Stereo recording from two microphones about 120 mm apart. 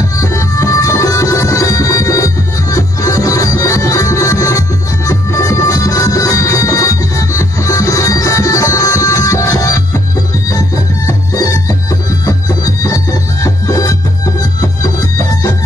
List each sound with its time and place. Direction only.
0.2 s music: 25° left (ahead or behind)
11.1 s music: 30° left (ahead or behind)